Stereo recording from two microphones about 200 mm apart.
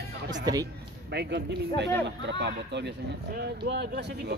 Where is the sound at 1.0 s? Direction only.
60° right (ahead or behind).